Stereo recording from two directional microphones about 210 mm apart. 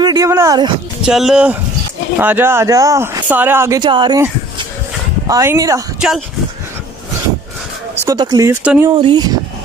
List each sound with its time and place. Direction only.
0.0 s speech: 15° right (ahead or behind)
1.0 s speech: 5° right (ahead or behind)
5.9 s speech: centre (ahead or behind)
8.0 s speech: 15° right (ahead or behind)